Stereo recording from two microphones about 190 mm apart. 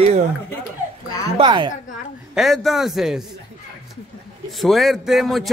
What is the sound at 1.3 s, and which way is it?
Speech, 25° right (ahead or behind).